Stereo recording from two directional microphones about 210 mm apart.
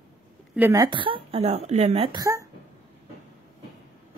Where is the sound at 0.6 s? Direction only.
15° right (ahead or behind); by 2.0 s 30° right (ahead or behind).